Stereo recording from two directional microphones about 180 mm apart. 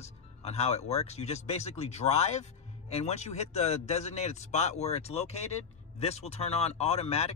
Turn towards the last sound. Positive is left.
turn(degrees=35)  # may be behind; listen again after turning